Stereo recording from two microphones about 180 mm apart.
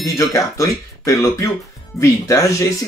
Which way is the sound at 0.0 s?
20° left (ahead or behind).